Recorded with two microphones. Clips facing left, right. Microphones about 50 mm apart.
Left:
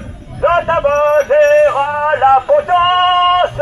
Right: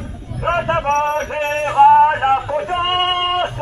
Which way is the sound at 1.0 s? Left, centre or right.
Left.